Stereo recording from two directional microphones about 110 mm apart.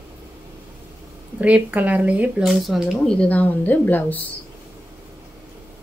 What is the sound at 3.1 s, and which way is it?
A woman's voice, 15° left (ahead or behind).